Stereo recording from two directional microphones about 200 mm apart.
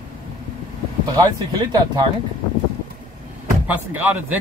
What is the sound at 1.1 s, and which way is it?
Speech, 20° right (ahead or behind).